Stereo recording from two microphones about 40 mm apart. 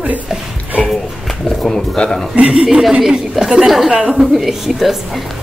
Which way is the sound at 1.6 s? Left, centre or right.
Centre.